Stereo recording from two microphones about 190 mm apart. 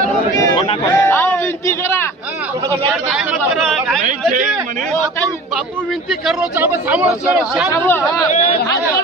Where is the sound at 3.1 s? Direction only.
Centre (ahead or behind).